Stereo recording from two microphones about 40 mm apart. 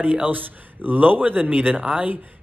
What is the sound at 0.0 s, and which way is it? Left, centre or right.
Speech, right.